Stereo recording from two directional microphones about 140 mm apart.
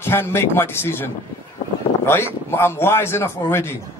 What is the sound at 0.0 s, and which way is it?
A man's voice, 15° left (ahead or behind).